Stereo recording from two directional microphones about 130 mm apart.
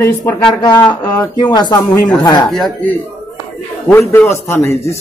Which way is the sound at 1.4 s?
35° left (ahead or behind).